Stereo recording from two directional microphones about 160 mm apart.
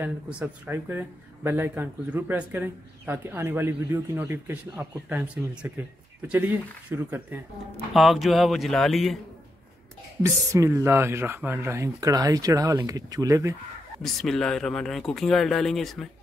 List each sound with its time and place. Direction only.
0.0 s speech: 10° right (ahead or behind)
7.9 s speech: centre (ahead or behind)
10.2 s speech: 20° right (ahead or behind)
14.0 s speech: centre (ahead or behind)